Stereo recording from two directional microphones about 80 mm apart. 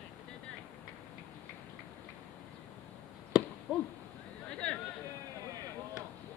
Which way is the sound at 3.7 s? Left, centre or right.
Centre.